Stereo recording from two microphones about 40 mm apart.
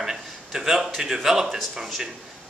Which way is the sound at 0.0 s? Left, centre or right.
Centre.